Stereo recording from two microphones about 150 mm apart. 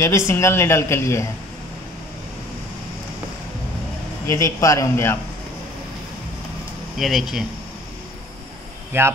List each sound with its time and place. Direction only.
0.0 s speech: 15° left (ahead or behind)
4.3 s a man's voice: 20° left (ahead or behind)
7.0 s speech: centre (ahead or behind)
8.9 s speech: 15° right (ahead or behind)